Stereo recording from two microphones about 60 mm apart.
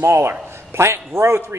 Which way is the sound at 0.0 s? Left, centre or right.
Right.